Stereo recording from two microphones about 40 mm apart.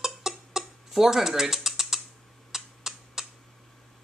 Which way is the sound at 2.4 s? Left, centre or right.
Centre.